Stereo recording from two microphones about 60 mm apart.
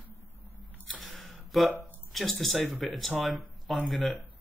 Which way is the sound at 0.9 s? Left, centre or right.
Centre.